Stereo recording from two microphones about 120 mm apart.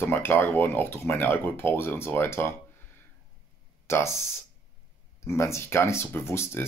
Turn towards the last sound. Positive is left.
turn(degrees=20)  # may be behind; listen again after turning